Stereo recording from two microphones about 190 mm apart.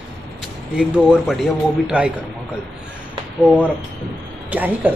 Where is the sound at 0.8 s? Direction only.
5° right (ahead or behind).